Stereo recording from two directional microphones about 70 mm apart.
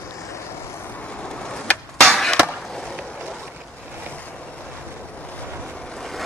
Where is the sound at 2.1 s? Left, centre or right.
Centre.